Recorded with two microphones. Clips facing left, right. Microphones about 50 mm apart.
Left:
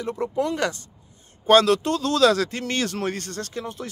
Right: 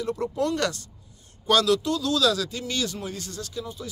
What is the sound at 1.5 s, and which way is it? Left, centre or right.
Speech, left.